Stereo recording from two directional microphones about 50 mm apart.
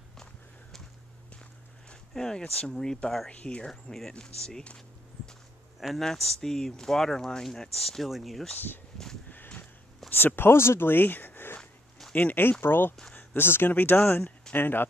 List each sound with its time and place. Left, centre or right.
2.1 s speech: centre
3.3 s speech: left
3.6 s speech: centre
5.8 s speech: centre
10.0 s speech: left